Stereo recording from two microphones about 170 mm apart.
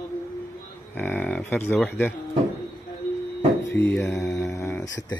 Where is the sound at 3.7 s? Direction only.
10° left (ahead or behind).